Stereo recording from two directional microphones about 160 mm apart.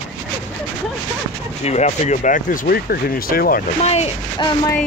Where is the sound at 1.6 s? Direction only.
45° left (ahead or behind); by 3.6 s 70° left (ahead or behind).